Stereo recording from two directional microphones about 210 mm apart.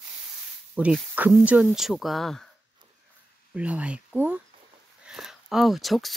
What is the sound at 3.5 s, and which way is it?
Speech, 5° right (ahead or behind).